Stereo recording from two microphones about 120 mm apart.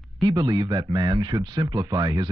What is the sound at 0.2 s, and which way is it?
Speech, 35° right (ahead or behind).